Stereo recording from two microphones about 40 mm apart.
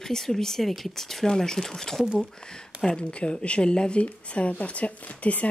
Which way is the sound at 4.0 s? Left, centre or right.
Left.